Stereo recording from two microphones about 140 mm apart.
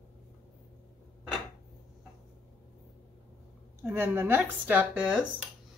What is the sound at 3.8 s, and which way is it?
Speech, 15° right (ahead or behind).